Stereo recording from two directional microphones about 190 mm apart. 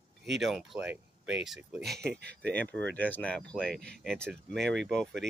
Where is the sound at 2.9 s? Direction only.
10° left (ahead or behind).